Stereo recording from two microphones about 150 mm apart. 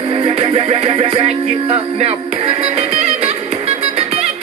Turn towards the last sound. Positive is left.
turn(degrees=-45)  # may be behind; listen again after turning